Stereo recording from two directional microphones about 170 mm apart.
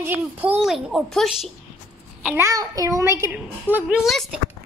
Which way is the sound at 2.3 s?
20° right (ahead or behind).